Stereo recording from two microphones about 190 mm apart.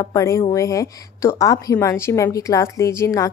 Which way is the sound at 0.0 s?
15° left (ahead or behind).